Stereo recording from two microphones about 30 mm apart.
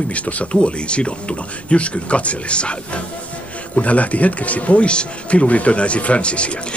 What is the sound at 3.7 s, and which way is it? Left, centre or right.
Speech, left.